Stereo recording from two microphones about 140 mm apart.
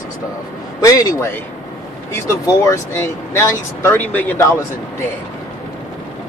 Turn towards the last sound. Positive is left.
turn(degrees=20)  # may be behind; listen again after turning